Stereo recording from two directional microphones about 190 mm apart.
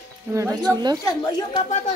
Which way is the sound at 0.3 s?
15° right (ahead or behind).